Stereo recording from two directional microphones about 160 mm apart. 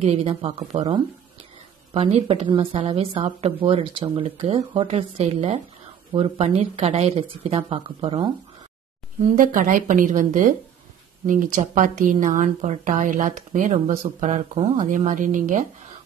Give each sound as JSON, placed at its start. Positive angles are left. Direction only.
{"t": 0.0, "sound": "a woman's voice", "side_deg": -40}
{"t": 9.2, "sound": "a woman's voice", "side_deg": -55}